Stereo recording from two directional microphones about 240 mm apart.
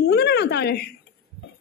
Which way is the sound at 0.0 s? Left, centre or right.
Left.